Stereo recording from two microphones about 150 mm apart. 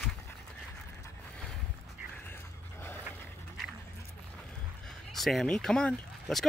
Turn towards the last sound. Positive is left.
turn(degrees=5)  # may be behind; listen again after turning